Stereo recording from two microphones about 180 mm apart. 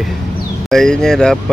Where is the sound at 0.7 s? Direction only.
5° left (ahead or behind).